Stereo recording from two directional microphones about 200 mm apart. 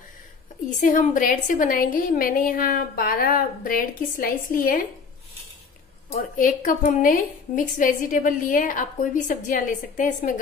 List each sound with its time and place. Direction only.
0.7 s a woman's voice: 40° left (ahead or behind)
6.3 s a woman's voice: 40° left (ahead or behind)